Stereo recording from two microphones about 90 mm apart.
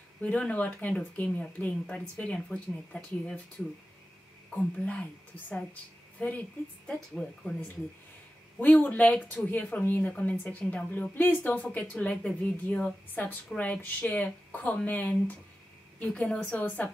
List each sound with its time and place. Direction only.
0.2 s speech: 15° left (ahead or behind)
4.5 s speech: 10° left (ahead or behind)
6.1 s speech: 15° left (ahead or behind)
8.5 s speech: 20° left (ahead or behind)